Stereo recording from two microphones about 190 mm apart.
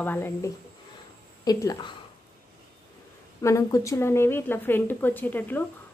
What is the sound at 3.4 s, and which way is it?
A woman's voice, 15° left (ahead or behind).